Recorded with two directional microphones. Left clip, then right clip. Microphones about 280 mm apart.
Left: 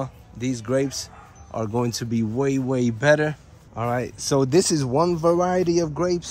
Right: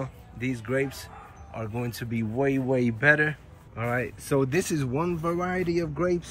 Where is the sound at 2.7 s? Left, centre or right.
Left.